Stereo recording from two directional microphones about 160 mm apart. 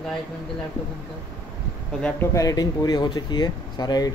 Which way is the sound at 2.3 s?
25° left (ahead or behind).